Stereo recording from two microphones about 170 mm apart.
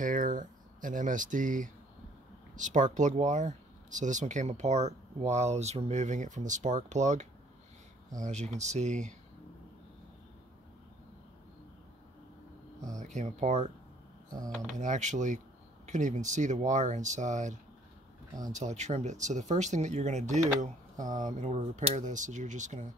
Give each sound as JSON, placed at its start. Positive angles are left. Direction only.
{"t": 0.0, "sound": "speech", "side_deg": -50}
{"t": 13.0, "sound": "speech", "side_deg": -45}
{"t": 14.7, "sound": "speech", "side_deg": -45}